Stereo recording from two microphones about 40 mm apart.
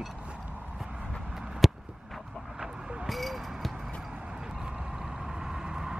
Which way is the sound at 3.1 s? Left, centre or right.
Centre.